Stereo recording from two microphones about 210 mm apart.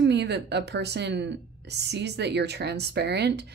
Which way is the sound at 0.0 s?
55° right (ahead or behind).